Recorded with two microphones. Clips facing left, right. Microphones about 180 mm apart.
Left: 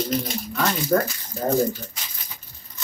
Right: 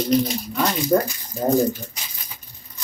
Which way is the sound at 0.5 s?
15° right (ahead or behind).